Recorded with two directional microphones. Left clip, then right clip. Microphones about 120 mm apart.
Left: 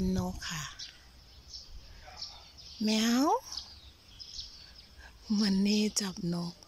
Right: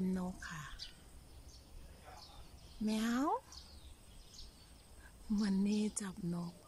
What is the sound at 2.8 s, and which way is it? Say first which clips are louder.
Speech: left 8 dB; 15° left (ahead or behind).